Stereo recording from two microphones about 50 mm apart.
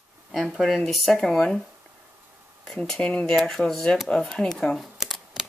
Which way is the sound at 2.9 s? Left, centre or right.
Left.